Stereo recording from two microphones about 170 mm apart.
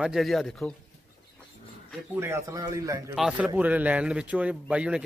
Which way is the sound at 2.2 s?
15° right (ahead or behind).